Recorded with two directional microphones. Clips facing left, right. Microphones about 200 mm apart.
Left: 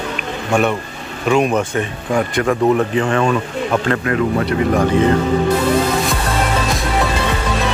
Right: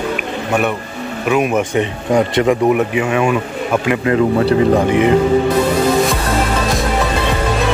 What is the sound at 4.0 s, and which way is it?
Speech, 25° right (ahead or behind).